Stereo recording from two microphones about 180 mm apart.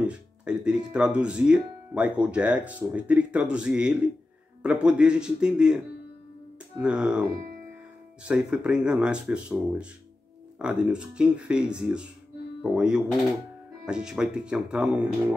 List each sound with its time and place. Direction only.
0.0 s speech: 5° right (ahead or behind)
6.8 s speech: 5° right (ahead or behind)
8.3 s speech: 5° right (ahead or behind)